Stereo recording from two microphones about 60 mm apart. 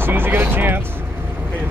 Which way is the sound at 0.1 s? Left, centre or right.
Right.